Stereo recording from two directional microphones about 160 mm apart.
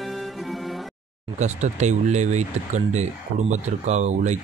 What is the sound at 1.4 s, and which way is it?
Speech, 45° right (ahead or behind).